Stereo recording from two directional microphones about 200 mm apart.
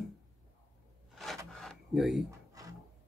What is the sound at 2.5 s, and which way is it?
Music, 15° right (ahead or behind).